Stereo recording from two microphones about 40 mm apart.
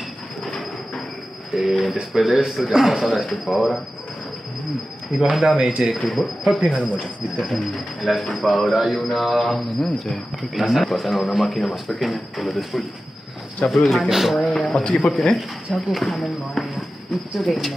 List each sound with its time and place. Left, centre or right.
1.5 s speech: centre
5.1 s speech: centre
5.6 s speech: right
6.0 s speech: centre